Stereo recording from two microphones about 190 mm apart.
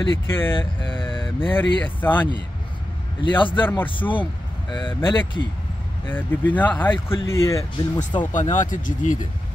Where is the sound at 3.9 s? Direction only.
25° left (ahead or behind).